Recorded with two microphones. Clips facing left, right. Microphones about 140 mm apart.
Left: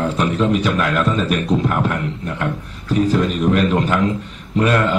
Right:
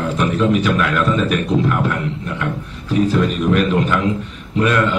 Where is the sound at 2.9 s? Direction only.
40° left (ahead or behind).